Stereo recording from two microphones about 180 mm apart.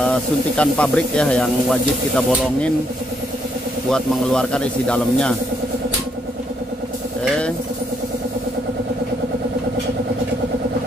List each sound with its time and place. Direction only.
0.0 s speech: 5° left (ahead or behind)
3.9 s speech: 5° left (ahead or behind)
7.2 s vehicle: 5° left (ahead or behind)